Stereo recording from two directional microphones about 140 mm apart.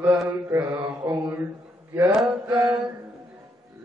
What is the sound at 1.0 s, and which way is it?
Mantra, 15° right (ahead or behind).